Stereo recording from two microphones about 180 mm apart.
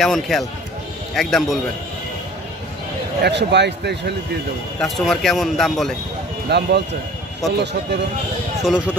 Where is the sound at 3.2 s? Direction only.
70° right (ahead or behind).